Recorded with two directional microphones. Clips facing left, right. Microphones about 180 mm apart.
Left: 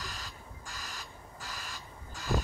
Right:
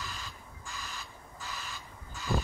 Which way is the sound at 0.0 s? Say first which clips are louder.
Right 1 dB; 40° left (ahead or behind).